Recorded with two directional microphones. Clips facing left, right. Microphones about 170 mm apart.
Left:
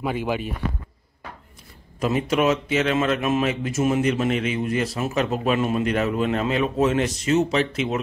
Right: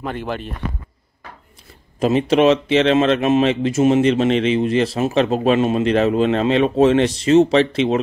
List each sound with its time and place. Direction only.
0.0 s speech: 5° left (ahead or behind)
2.0 s speech: 25° right (ahead or behind)